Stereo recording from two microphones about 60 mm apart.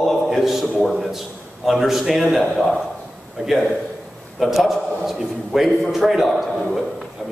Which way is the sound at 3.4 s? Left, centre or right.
Centre.